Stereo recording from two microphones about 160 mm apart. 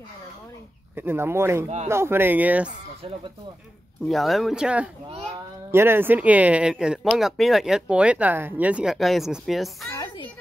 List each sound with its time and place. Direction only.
0.9 s speech: 15° right (ahead or behind)
4.1 s speech: centre (ahead or behind)